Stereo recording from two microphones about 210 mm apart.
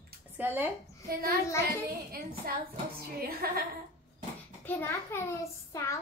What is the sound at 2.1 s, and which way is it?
A woman's voice, 45° right (ahead or behind).